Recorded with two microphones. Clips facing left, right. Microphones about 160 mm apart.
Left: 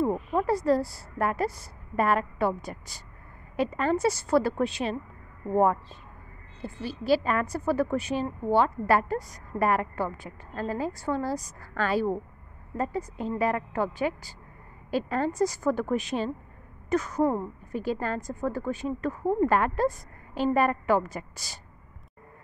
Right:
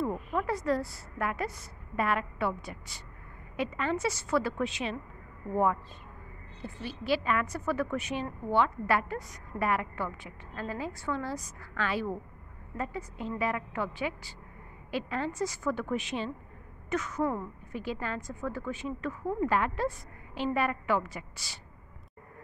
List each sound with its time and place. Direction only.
0.0 s a woman's voice: 35° left (ahead or behind)